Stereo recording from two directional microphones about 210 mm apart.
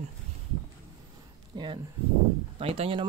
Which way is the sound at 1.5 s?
20° right (ahead or behind).